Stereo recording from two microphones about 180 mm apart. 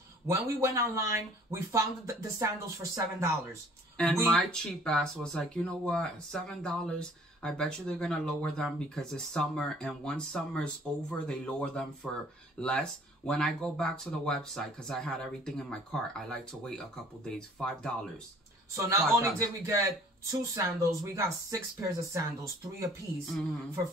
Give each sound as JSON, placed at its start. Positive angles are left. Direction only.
{"t": 0.3, "sound": "speech", "side_deg": -15}
{"t": 4.0, "sound": "speech", "side_deg": 0}
{"t": 18.9, "sound": "speech", "side_deg": -15}